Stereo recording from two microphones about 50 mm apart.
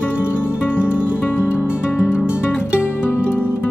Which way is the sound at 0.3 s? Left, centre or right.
Left.